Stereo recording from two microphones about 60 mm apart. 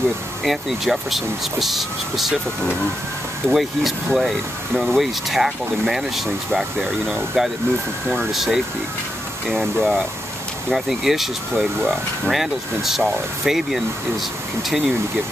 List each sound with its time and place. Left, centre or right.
0.4 s speech: centre
3.4 s speech: centre